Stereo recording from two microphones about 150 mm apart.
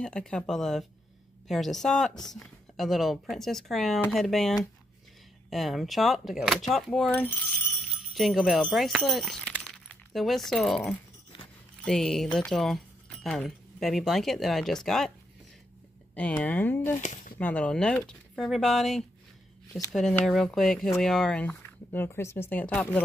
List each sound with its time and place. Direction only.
0.0 s speech: 5° left (ahead or behind)
7.1 s speech: 15° left (ahead or behind)
7.9 s speech: centre (ahead or behind)
16.2 s speech: 10° left (ahead or behind)
16.9 s speech: 55° left (ahead or behind)
17.4 s speech: 10° left (ahead or behind)